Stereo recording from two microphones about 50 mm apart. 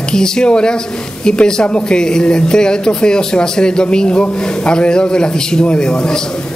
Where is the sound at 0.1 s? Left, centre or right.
Centre.